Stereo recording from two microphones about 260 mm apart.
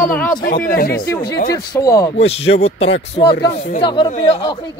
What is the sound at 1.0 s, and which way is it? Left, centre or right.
Speech, centre.